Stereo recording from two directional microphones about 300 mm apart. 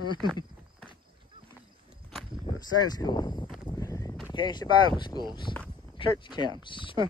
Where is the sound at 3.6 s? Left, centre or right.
Centre.